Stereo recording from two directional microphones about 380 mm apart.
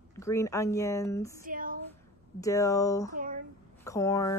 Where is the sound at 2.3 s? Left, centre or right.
Centre.